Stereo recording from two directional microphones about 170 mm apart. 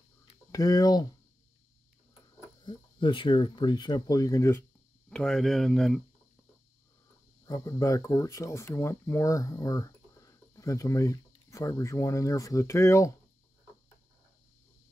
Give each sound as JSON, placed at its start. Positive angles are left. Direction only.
{"t": 0.5, "sound": "speech", "side_deg": 20}
{"t": 2.6, "sound": "speech", "side_deg": 30}
{"t": 5.1, "sound": "speech", "side_deg": 5}
{"t": 7.4, "sound": "speech", "side_deg": 20}